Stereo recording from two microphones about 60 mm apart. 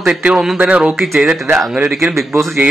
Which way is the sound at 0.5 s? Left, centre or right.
Right.